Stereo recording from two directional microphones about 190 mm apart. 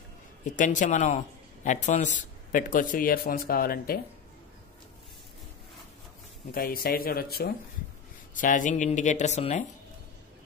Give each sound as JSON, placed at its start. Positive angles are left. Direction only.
{"t": 0.6, "sound": "a man's voice", "side_deg": 40}
{"t": 6.5, "sound": "a man's voice", "side_deg": 50}
{"t": 8.4, "sound": "speech", "side_deg": 45}